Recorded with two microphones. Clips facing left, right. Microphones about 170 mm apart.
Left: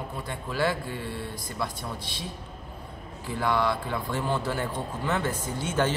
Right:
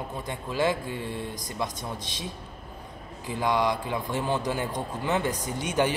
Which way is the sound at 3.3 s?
15° right (ahead or behind).